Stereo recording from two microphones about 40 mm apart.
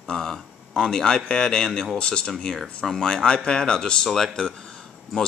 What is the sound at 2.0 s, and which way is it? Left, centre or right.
Speech, left.